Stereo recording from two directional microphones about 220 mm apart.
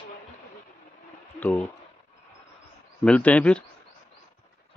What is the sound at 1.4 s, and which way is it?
Speech, 5° left (ahead or behind).